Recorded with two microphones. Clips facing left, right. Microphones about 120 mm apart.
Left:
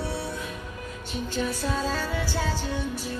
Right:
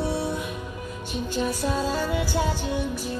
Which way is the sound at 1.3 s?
15° right (ahead or behind).